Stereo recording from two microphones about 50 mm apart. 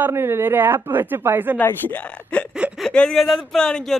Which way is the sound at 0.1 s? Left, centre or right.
Right.